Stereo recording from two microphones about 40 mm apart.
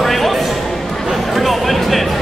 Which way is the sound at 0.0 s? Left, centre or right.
Centre.